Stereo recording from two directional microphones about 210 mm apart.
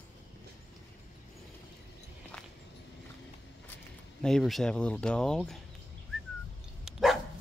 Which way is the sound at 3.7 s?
5° left (ahead or behind).